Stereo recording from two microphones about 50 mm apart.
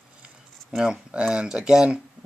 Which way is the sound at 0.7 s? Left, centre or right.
Centre.